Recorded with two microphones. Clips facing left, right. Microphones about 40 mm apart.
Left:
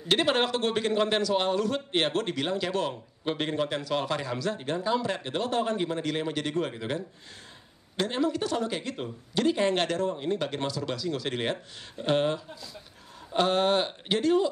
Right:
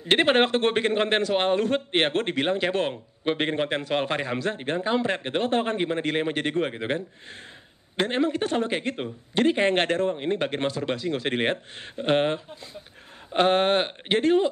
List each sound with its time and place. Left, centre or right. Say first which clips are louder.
0.1 s a man's voice: right 5 dB; right